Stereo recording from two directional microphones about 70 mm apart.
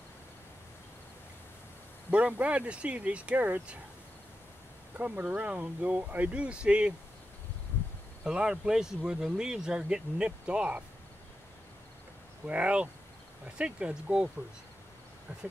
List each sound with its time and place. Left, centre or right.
2.0 s speech: centre
4.9 s speech: right
8.2 s speech: centre
12.4 s speech: centre